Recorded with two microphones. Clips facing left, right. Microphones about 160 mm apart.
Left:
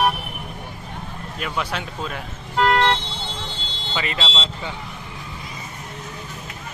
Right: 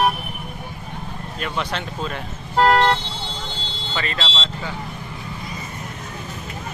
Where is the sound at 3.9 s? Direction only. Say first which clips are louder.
Left 1 dB; 15° left (ahead or behind).